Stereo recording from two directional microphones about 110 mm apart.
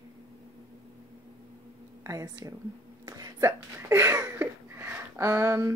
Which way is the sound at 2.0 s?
30° right (ahead or behind).